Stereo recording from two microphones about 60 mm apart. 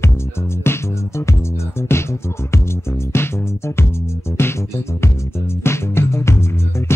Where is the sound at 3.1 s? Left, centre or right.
Left.